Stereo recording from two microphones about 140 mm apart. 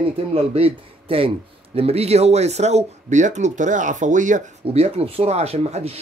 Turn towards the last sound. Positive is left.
turn(degrees=-45)  # may be behind; listen again after turning